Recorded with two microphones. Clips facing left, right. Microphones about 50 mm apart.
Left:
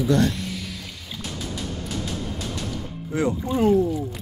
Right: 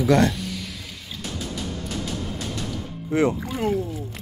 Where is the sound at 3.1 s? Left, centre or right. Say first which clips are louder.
Right 3 dB; right.